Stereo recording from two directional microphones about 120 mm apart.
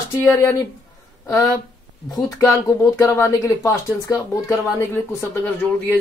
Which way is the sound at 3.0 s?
25° left (ahead or behind).